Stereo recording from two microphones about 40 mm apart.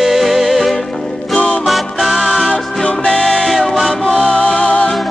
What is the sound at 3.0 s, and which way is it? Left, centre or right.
Music, centre.